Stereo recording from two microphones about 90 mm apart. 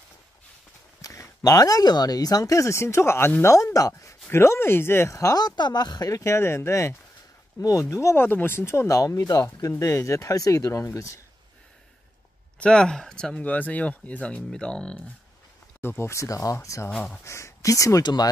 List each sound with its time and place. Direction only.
1.0 s speech: 40° left (ahead or behind)
3.5 s speech: 40° left (ahead or behind)
5.6 s speech: 50° left (ahead or behind); by 11.1 s 35° left (ahead or behind)
12.5 s speech: 10° left (ahead or behind)
15.8 s speech: 30° left (ahead or behind)
16.9 s speech: 15° left (ahead or behind)
17.2 s speech: 30° left (ahead or behind)
18.0 s speech: 50° left (ahead or behind)